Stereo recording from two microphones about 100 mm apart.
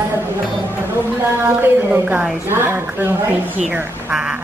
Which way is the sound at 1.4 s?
20° right (ahead or behind).